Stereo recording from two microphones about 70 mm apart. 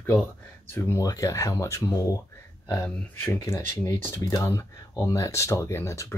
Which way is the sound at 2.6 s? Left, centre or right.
Left.